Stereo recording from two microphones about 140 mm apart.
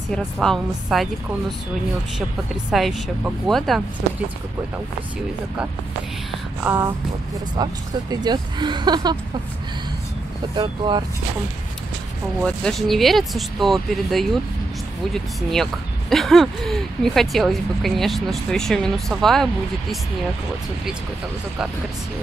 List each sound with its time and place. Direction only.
0.1 s speech: 5° left (ahead or behind)
2.7 s speech: centre (ahead or behind)
6.6 s speech: 20° right (ahead or behind)
7.5 s speech: 30° right (ahead or behind)
10.5 s speech: 35° right (ahead or behind)
12.4 s speech: 5° left (ahead or behind)